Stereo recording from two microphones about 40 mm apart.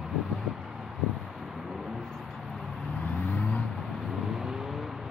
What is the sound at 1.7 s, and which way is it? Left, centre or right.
Vehicle, centre.